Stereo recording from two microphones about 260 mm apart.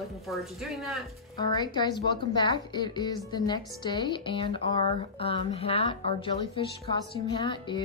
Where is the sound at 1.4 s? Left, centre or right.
Centre.